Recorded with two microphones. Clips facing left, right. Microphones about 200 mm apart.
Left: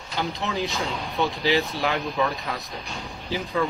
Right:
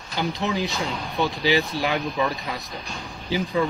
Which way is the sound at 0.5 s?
Centre (ahead or behind).